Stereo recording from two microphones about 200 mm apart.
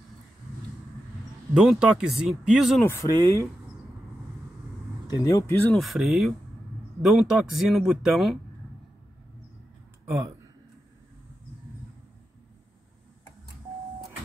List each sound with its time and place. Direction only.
1.5 s speech: 5° right (ahead or behind)
2.9 s speech: 15° left (ahead or behind)
5.1 s speech: 15° left (ahead or behind)
5.8 s speech: centre (ahead or behind)
10.0 s speech: 15° right (ahead or behind)